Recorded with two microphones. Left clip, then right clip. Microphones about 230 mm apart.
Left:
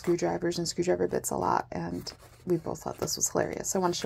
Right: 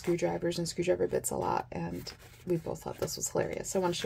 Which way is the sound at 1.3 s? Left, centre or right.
Centre.